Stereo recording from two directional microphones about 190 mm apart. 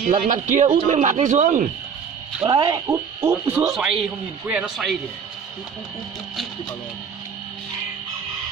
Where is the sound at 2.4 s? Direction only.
25° right (ahead or behind).